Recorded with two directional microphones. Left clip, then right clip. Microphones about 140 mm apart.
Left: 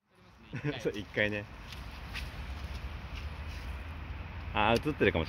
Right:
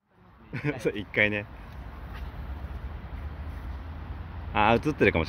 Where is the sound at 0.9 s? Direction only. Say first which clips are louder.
Right 7 dB; 15° right (ahead or behind).